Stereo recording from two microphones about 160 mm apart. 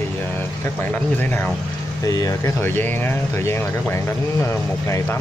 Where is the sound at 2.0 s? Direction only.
20° left (ahead or behind).